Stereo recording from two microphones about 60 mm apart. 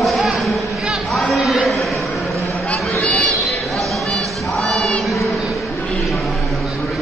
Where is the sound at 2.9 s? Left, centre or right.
Centre.